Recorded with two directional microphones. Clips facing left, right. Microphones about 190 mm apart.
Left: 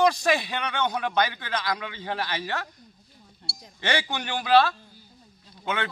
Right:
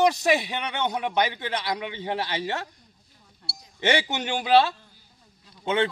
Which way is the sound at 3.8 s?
20° right (ahead or behind).